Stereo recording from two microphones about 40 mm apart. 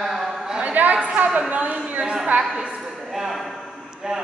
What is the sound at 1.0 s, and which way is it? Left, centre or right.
Speech, right.